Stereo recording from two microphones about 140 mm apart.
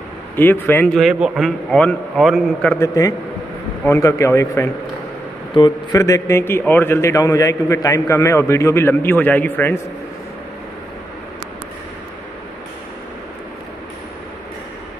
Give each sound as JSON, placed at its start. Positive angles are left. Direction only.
{"t": 0.4, "sound": "a man's voice", "side_deg": 15}
{"t": 0.9, "sound": "a man's voice", "side_deg": 0}
{"t": 2.8, "sound": "speech", "side_deg": 25}
{"t": 5.5, "sound": "speech", "side_deg": 30}